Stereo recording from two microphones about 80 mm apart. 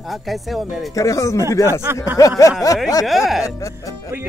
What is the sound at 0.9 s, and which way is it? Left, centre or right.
Speech, left.